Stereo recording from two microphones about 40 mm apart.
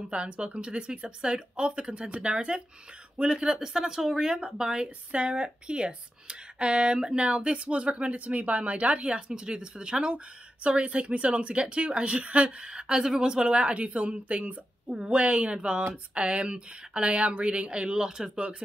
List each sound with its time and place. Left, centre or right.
0.1 s a woman's voice: right
4.8 s a woman's voice: right
18.3 s a woman's voice: right